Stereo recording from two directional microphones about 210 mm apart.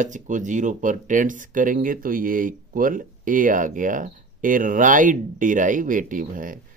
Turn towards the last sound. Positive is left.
turn(degrees=-40)  # may be behind; listen again after turning